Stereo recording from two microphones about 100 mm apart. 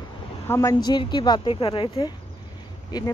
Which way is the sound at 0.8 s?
45° left (ahead or behind).